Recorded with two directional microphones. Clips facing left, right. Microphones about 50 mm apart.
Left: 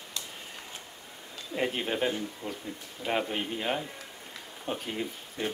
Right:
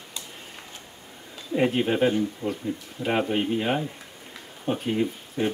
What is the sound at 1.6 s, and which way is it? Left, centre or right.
Speech, centre.